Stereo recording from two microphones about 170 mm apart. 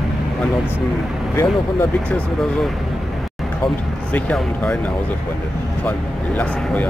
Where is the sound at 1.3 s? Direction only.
15° left (ahead or behind).